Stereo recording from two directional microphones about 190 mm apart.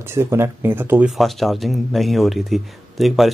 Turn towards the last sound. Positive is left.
turn(degrees=0)  # may be behind; listen again after turning